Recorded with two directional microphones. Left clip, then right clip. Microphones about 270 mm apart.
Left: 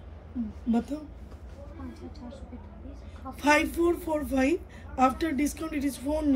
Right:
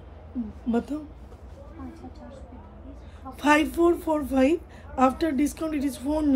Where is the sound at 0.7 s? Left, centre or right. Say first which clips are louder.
Right 3 dB; centre.